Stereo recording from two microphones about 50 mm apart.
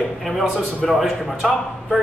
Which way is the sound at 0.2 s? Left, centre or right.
Centre.